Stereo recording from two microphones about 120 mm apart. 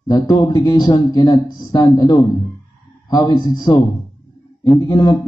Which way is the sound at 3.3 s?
35° left (ahead or behind).